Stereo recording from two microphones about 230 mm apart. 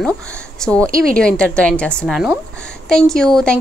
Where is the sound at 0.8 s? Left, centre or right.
Right.